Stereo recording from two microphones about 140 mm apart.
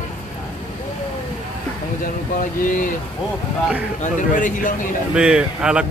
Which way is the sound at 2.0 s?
80° left.